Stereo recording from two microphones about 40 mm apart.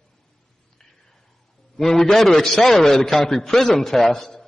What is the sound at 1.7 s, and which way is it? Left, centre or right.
A man's voice, centre.